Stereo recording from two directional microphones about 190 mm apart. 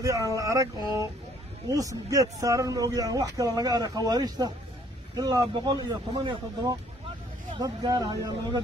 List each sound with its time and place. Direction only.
0.0 s speech: 20° right (ahead or behind)